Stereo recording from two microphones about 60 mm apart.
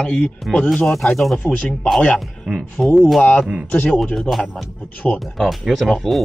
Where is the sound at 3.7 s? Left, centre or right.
Left.